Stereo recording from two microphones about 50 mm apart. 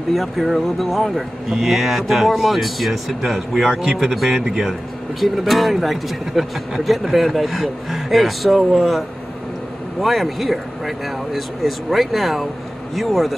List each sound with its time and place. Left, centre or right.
0.1 s speech: centre